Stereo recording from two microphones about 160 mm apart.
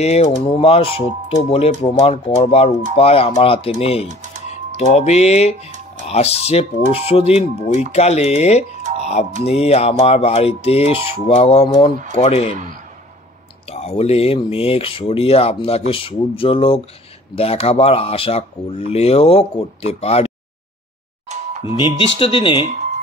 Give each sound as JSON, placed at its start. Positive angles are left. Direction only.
{"t": 0.0, "sound": "speech", "side_deg": 40}
{"t": 13.7, "sound": "speech", "side_deg": 40}
{"t": 21.6, "sound": "speech", "side_deg": 30}